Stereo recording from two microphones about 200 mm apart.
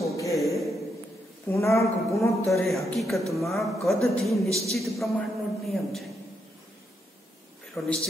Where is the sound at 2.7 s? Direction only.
Centre (ahead or behind).